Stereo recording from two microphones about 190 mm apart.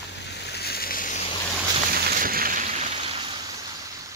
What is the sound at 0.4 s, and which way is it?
Boat, 60° left (ahead or behind).